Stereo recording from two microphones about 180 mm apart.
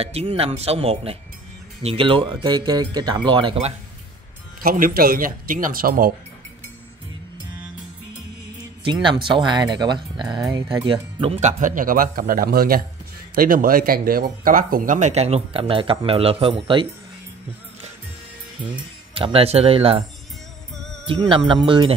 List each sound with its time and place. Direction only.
0.0 s speech: 35° right (ahead or behind)
4.6 s speech: 50° right (ahead or behind)
8.8 s speech: 25° right (ahead or behind)
11.4 s speech: 45° right (ahead or behind); by 16.8 s 30° right (ahead or behind)
19.1 s speech: 30° right (ahead or behind)
20.7 s music: 5° left (ahead or behind)
21.1 s speech: 25° right (ahead or behind)